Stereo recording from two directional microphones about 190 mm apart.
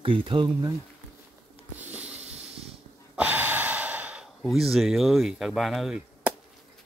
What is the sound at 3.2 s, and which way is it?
Gasp, 10° right (ahead or behind).